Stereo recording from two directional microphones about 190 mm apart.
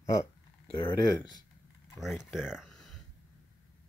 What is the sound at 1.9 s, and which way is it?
Speech, centre (ahead or behind).